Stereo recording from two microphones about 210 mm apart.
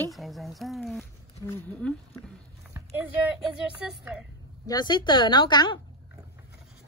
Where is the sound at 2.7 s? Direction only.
5° right (ahead or behind).